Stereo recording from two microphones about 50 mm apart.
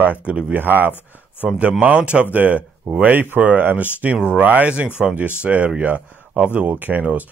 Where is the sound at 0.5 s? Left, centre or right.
Right.